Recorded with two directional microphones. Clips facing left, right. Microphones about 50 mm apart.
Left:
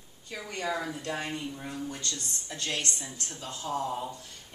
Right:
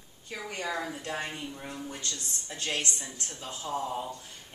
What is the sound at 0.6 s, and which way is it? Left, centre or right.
Speech, centre.